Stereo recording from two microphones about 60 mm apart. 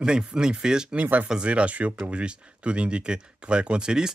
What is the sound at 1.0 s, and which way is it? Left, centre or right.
Speech, right.